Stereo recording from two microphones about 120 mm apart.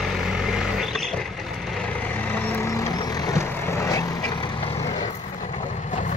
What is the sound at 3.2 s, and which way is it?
Vehicle, 25° left (ahead or behind).